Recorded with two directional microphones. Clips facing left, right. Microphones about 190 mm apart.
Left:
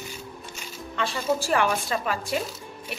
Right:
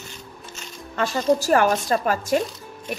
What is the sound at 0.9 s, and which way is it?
A woman's voice, 45° right (ahead or behind).